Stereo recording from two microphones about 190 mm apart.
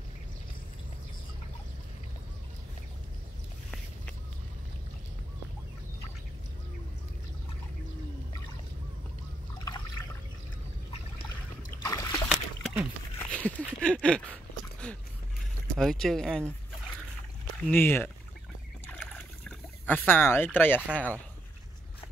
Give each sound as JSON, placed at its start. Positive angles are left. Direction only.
{"t": 11.8, "sound": "splash", "side_deg": 20}
{"t": 12.3, "sound": "splash", "side_deg": -10}
{"t": 13.2, "sound": "a sound", "side_deg": 5}
{"t": 15.8, "sound": "speech", "side_deg": 0}
{"t": 17.6, "sound": "speech", "side_deg": 10}
{"t": 18.9, "sound": "trickle", "side_deg": 5}
{"t": 19.9, "sound": "speech", "side_deg": 10}